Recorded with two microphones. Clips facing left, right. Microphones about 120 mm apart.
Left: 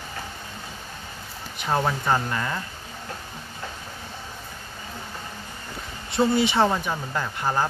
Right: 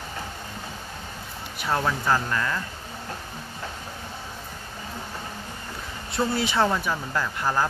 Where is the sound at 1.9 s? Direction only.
20° left (ahead or behind).